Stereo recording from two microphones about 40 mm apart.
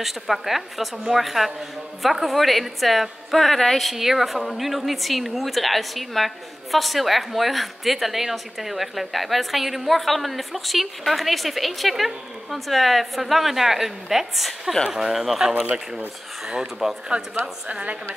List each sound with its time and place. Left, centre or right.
0.0 s a woman's voice: centre
17.6 s a woman's voice: right